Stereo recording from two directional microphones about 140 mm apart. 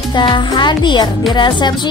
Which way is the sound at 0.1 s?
35° left (ahead or behind).